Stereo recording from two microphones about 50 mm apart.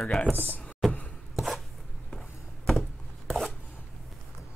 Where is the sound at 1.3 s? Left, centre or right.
Centre.